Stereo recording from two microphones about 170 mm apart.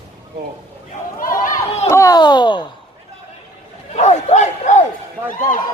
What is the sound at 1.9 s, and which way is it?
Speech, 20° left (ahead or behind).